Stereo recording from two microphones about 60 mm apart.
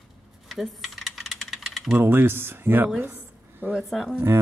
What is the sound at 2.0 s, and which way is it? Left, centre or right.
Speech, right.